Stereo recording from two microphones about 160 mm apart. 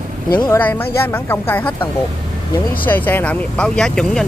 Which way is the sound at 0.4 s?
10° left (ahead or behind).